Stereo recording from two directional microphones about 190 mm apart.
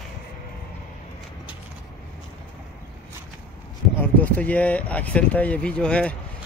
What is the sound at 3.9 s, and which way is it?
Speech, 10° left (ahead or behind).